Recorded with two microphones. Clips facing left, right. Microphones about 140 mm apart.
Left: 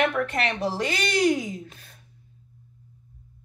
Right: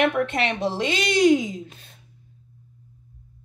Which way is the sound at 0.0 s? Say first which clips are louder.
Right 3 dB; 20° right (ahead or behind).